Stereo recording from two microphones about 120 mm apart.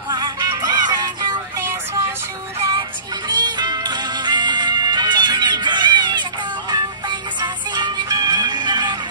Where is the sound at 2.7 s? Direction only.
35° right (ahead or behind).